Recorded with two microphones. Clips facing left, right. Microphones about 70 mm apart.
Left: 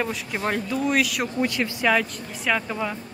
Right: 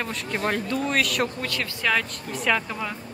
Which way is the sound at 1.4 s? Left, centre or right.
Centre.